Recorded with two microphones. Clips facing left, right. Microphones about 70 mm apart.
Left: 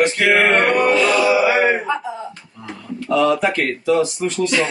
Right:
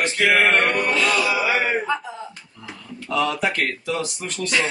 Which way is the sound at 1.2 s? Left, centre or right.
Centre.